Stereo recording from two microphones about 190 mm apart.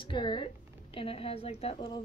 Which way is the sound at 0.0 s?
25° left (ahead or behind).